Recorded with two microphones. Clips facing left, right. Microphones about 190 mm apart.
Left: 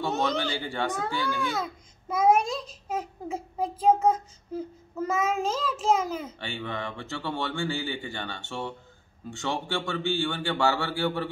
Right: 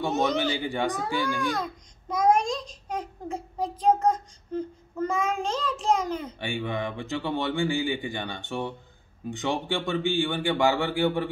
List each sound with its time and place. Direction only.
0.4 s speech: 15° right (ahead or behind)
1.5 s a sound: 5° left (ahead or behind)
6.4 s speech: 15° right (ahead or behind)